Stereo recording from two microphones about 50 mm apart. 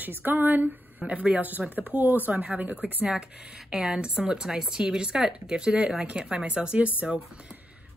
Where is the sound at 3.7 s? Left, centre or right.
Centre.